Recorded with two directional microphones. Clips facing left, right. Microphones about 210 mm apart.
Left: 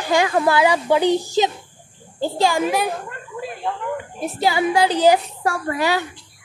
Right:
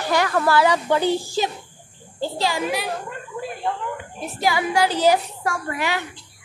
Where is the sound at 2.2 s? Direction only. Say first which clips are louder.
Left 5 dB; 50° left (ahead or behind).